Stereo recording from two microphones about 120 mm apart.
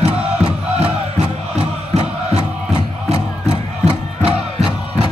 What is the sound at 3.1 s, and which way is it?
Music, 60° right (ahead or behind).